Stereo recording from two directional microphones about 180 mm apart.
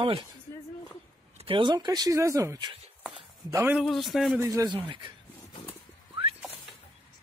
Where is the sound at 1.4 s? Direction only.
25° right (ahead or behind).